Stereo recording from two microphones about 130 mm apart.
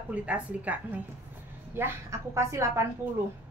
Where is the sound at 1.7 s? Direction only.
20° right (ahead or behind).